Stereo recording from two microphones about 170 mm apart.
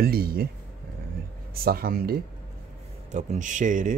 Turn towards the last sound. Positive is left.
turn(degrees=-50)  # may be behind; listen again after turning